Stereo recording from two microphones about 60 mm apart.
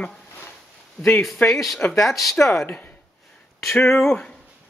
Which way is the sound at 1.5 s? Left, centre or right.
Centre.